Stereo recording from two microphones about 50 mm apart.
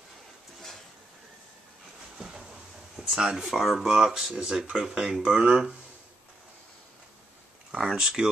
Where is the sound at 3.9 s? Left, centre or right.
Centre.